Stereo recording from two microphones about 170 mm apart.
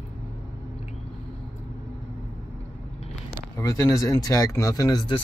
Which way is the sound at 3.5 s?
15° left (ahead or behind).